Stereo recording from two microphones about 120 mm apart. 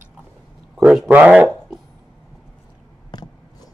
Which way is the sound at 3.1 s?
35° left (ahead or behind).